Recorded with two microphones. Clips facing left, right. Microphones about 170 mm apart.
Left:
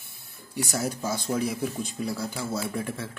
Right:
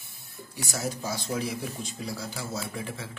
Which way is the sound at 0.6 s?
55° left (ahead or behind).